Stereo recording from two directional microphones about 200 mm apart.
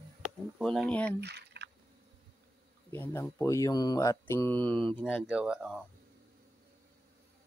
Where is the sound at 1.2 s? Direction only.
60° right (ahead or behind).